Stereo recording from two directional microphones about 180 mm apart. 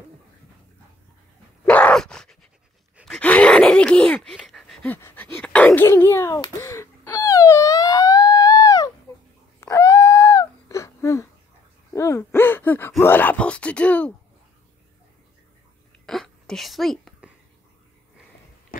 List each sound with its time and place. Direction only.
1.7 s groan: 5° left (ahead or behind)
3.0 s gasp: 5° left (ahead or behind)
5.7 s a sound: 10° left (ahead or behind)
9.6 s wail: 15° left (ahead or behind)
11.9 s gasp: 15° left (ahead or behind)
13.0 s speech: 10° left (ahead or behind)
16.1 s a sound: centre (ahead or behind)